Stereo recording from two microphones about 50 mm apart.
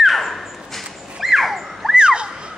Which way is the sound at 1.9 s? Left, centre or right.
Centre.